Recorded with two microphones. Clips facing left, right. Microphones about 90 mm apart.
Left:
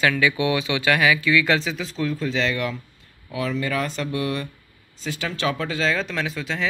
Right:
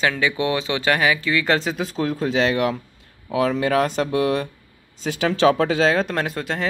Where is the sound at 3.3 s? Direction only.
75° right (ahead or behind); by 4.4 s 90° right.